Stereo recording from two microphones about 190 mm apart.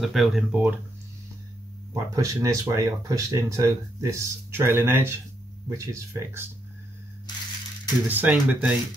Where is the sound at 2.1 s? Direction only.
20° right (ahead or behind).